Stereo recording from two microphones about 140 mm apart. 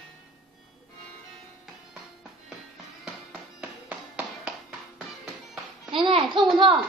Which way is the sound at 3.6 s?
10° right (ahead or behind).